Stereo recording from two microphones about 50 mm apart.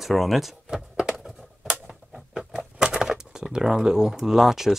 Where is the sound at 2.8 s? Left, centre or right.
Centre.